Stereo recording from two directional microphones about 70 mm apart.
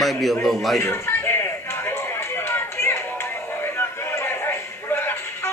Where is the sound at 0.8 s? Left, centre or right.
Left.